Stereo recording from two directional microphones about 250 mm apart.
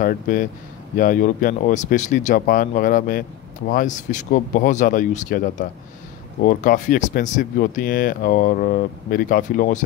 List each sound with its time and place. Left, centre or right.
0.0 s speech: left